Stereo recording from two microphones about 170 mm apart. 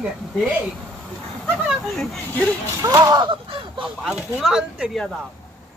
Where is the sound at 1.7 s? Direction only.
Centre (ahead or behind).